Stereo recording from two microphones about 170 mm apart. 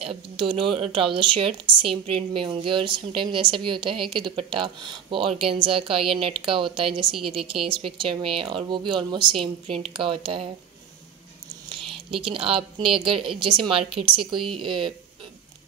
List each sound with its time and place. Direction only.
0.0 s speech: 30° right (ahead or behind)
11.7 s speech: 30° right (ahead or behind)